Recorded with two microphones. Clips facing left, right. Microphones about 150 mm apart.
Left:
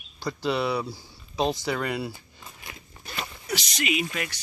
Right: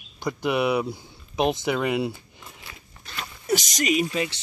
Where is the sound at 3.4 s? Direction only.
45° right (ahead or behind).